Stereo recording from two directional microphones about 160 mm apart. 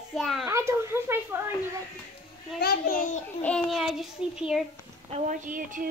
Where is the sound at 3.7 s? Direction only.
Centre (ahead or behind).